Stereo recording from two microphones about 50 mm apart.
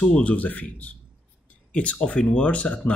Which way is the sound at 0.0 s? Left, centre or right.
Left.